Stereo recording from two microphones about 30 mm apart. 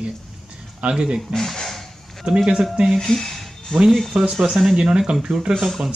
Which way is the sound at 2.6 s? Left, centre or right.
Centre.